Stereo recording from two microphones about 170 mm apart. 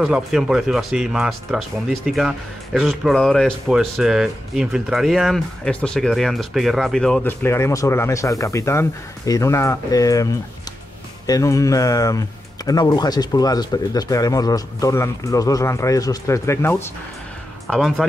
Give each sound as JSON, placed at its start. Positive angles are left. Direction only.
{"t": 0.0, "sound": "speech", "side_deg": 0}
{"t": 17.6, "sound": "speech", "side_deg": 0}